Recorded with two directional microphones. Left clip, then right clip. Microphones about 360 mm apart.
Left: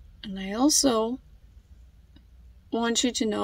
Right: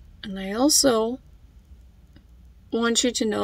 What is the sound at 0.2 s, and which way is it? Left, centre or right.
Speech, centre.